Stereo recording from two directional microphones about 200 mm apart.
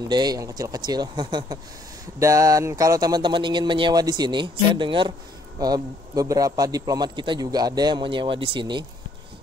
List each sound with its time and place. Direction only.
0.1 s a man's voice: 20° right (ahead or behind)